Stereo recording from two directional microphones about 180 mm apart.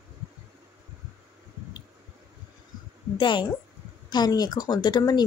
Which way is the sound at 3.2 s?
25° left (ahead or behind).